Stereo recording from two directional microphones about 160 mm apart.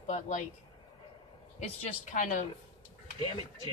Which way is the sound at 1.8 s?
50° left (ahead or behind).